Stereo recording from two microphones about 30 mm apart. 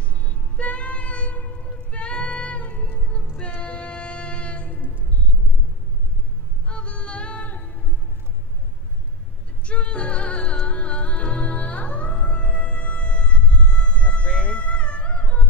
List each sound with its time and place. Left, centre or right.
0.2 s music: left
6.7 s music: left
9.7 s music: left
14.2 s a sound: left
14.6 s music: left